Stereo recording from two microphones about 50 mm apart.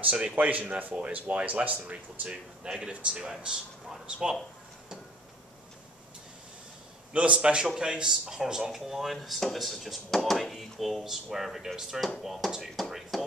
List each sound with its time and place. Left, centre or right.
0.0 s speech: right
3.3 s a man's voice: centre
7.1 s a man's voice: right; by 13.3 s centre